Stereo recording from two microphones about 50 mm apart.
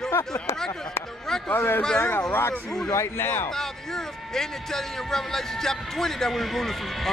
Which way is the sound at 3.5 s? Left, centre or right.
Centre.